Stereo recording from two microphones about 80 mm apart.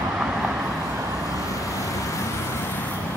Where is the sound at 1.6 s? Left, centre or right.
Left.